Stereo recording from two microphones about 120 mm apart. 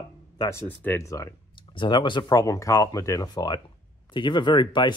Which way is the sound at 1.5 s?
45° left (ahead or behind).